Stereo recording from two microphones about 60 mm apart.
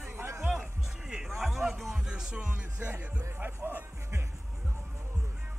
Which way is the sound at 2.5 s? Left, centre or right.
Right.